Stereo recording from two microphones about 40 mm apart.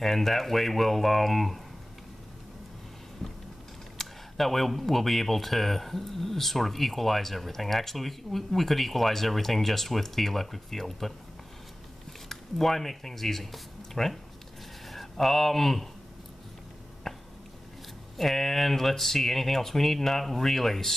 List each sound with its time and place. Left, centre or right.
0.0 s speech: centre
3.2 s a sound: centre
4.0 s speech: centre
12.3 s speech: centre
17.1 s a sound: centre
18.1 s speech: centre